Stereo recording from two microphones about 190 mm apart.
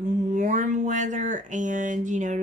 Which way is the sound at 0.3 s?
45° right (ahead or behind).